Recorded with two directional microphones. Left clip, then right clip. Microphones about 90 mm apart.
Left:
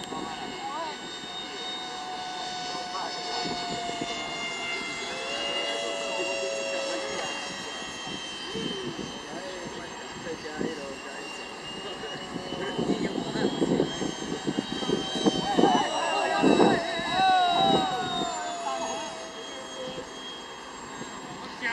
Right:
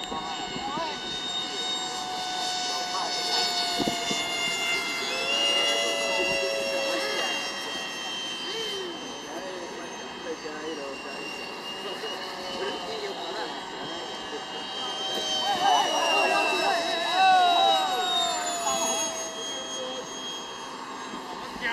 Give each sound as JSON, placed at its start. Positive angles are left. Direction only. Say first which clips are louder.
{"t": 2.3, "sound": "vehicle", "louder": "right 4 dB", "side_deg": -35}
{"t": 14.8, "sound": "vehicle", "louder": "right 1 dB", "side_deg": 0}
{"t": 16.1, "sound": "music", "louder": "right 1 dB", "side_deg": 10}
{"t": 17.2, "sound": "vehicle", "louder": "right 2 dB", "side_deg": 0}
{"t": 17.8, "sound": "a sound", "louder": "right 3 dB", "side_deg": -20}